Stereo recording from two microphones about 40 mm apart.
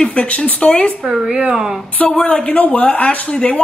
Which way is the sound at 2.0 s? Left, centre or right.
Left.